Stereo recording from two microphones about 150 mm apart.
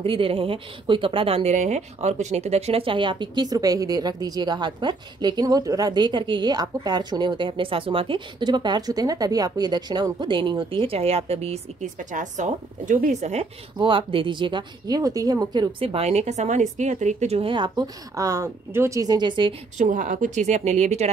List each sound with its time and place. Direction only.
0.0 s a woman's voice: 35° right (ahead or behind)
13.7 s a woman's voice: 35° right (ahead or behind)
15.9 s a woman's voice: 45° right (ahead or behind)
19.8 s speech: 60° right (ahead or behind)